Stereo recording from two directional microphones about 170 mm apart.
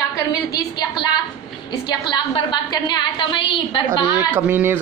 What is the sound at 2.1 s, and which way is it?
A woman's voice, 25° left (ahead or behind).